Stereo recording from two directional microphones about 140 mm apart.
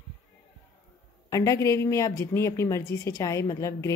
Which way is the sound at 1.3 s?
20° left (ahead or behind).